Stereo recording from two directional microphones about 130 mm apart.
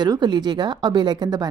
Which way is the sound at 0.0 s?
35° right (ahead or behind).